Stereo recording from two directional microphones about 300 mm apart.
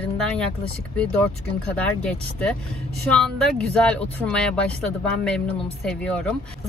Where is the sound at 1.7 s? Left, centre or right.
Centre.